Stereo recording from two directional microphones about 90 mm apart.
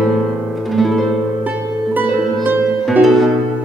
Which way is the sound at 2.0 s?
20° right (ahead or behind).